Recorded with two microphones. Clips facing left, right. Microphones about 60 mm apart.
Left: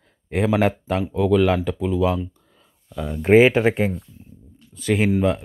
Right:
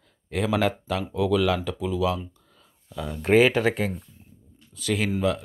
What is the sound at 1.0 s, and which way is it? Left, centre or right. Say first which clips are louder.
Speech: left 5 dB; centre.